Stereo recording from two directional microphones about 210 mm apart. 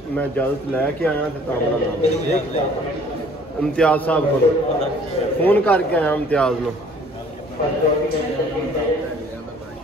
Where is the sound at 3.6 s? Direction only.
5° left (ahead or behind).